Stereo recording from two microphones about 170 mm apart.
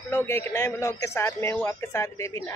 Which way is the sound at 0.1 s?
15° left (ahead or behind).